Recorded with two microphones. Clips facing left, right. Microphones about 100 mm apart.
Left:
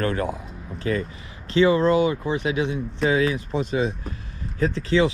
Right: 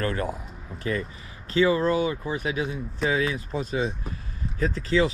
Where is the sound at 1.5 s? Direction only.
30° left (ahead or behind).